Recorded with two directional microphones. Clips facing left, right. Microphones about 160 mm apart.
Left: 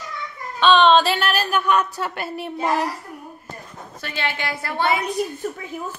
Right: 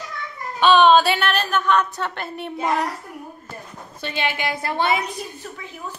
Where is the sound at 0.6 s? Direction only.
10° right (ahead or behind).